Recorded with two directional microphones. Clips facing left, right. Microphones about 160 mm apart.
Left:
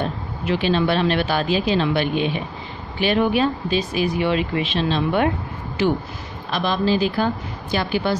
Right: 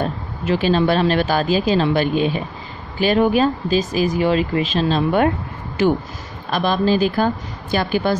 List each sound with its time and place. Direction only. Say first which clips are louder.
0.0 s speech: right 2 dB; 40° right (ahead or behind)
6.5 s speech: right 3 dB; 45° right (ahead or behind)